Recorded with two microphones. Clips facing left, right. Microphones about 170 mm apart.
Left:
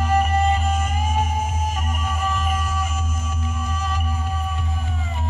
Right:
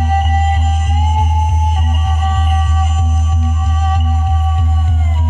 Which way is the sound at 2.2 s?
55° right (ahead or behind).